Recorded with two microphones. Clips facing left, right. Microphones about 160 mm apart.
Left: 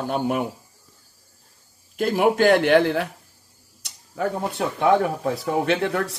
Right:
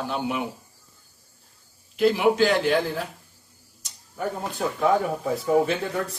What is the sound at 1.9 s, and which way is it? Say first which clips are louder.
Speech: even; 50° left (ahead or behind).